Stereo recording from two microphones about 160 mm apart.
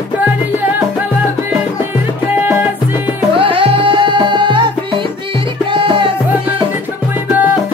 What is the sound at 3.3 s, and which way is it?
Music, 35° right (ahead or behind).